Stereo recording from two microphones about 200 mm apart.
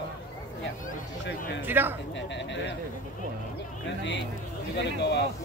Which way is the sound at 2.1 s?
60° left (ahead or behind).